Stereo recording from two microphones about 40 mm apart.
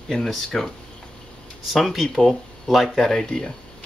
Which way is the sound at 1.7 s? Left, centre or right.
Centre.